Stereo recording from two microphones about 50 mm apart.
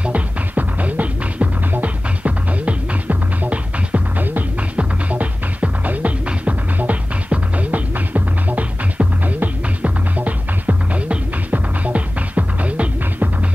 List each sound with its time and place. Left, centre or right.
0.0 s music: right